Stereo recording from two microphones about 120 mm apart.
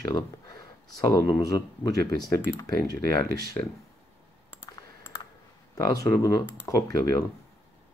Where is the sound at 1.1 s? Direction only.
30° left (ahead or behind).